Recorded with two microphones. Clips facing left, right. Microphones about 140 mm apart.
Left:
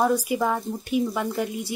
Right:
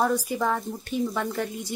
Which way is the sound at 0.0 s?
10° left (ahead or behind).